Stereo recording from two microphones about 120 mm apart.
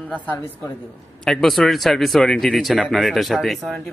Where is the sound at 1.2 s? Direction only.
5° left (ahead or behind).